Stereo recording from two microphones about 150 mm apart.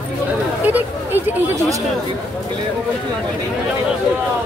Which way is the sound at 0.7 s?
10° right (ahead or behind).